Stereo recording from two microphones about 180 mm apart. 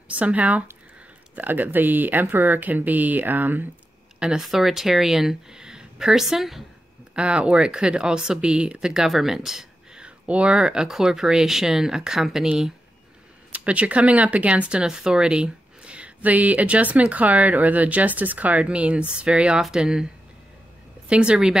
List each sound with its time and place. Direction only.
0.1 s speech: 10° right (ahead or behind)
21.1 s speech: 5° right (ahead or behind)